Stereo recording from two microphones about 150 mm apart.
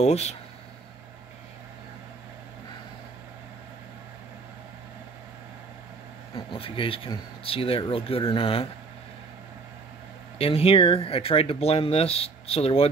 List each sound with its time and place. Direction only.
0.0 s speech: 45° left (ahead or behind)
6.3 s speech: 35° left (ahead or behind)
10.4 s speech: 40° left (ahead or behind)